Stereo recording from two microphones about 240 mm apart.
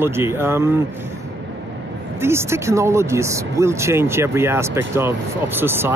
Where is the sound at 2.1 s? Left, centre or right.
Centre.